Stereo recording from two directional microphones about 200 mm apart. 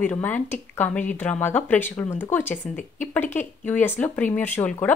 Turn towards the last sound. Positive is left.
turn(degrees=10)  # may be behind; listen again after turning